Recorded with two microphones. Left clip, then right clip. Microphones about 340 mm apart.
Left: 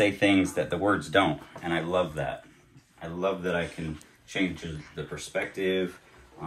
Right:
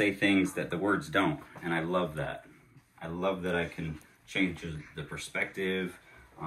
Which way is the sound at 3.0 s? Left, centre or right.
Centre.